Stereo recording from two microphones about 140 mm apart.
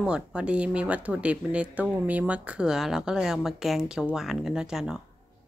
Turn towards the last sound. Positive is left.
turn(degrees=-5)  # may be behind; listen again after turning